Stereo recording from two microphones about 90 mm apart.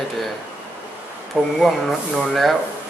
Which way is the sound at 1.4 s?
Centre (ahead or behind).